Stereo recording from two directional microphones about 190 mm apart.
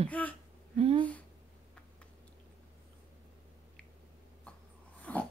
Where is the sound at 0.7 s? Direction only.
30° right (ahead or behind).